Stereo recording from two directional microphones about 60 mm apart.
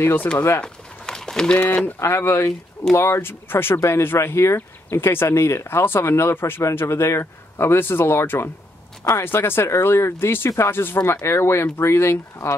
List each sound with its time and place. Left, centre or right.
0.0 s speech: left
0.6 s a sound: centre
2.0 s speech: left